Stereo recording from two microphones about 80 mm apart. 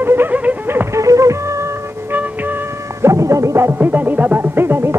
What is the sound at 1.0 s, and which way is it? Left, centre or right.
Music, right.